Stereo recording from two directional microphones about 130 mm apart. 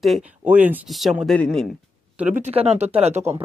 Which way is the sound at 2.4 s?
55° right (ahead or behind).